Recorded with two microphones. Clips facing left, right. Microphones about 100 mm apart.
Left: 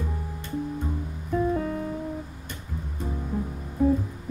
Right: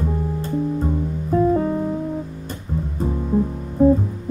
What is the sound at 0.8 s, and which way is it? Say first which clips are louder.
Music: right 9 dB; 35° right (ahead or behind).